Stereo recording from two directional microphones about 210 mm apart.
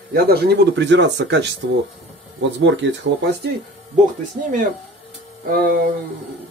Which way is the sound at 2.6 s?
60° right (ahead or behind).